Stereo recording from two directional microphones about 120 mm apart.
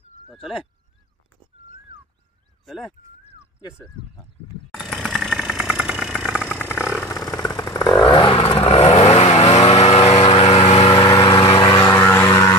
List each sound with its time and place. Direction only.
0.3 s speech: centre (ahead or behind)
2.6 s speech: centre (ahead or behind)
4.7 s engine: centre (ahead or behind)
6.4 s vehicle: 10° left (ahead or behind)
7.1 s a sound: 30° left (ahead or behind)
7.4 s chainsaw: 30° left (ahead or behind)
8.0 s vehicle: 45° left (ahead or behind); by 9.9 s 65° left (ahead or behind)
9.9 s vehicle: 50° left (ahead or behind)
11.0 s vehicle: 30° left (ahead or behind)
11.9 s vehicle: 20° left (ahead or behind)